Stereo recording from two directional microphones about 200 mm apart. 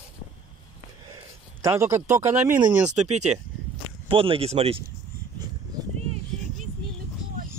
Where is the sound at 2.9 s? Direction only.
35° right (ahead or behind).